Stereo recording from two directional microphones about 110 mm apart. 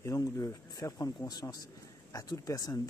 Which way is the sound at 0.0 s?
30° left (ahead or behind).